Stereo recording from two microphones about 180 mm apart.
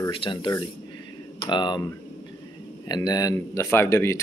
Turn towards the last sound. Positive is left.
turn(degrees=15)  # may be behind; listen again after turning